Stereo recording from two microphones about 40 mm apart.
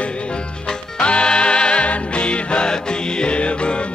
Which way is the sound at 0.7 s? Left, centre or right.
Left.